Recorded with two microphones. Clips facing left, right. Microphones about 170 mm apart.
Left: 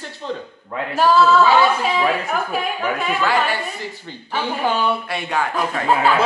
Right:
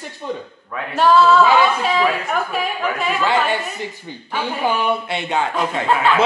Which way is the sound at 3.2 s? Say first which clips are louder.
Right 2 dB; 20° right (ahead or behind).